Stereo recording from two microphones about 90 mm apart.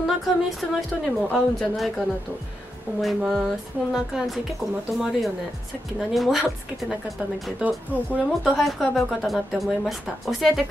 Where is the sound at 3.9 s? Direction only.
5° right (ahead or behind).